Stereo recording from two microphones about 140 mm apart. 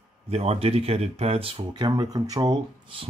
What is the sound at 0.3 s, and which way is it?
Speech, 45° right (ahead or behind).